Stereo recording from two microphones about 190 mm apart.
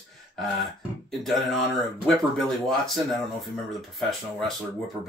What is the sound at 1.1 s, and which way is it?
Speech, centre (ahead or behind).